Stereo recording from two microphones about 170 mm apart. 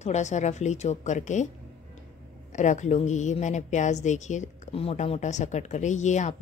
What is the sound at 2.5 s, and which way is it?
Speech, 45° left (ahead or behind).